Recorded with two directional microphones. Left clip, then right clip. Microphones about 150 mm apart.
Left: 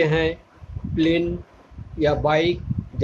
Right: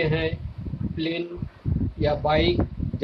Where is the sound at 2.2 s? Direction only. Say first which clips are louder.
Left 1 dB; 15° left (ahead or behind).